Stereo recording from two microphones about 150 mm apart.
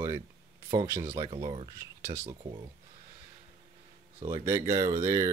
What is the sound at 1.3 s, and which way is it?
Speech, 35° right (ahead or behind).